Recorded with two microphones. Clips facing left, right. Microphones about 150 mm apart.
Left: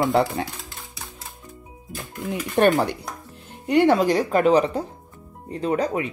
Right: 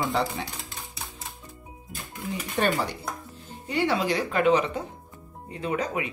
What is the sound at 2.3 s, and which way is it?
Speech, 60° left (ahead or behind).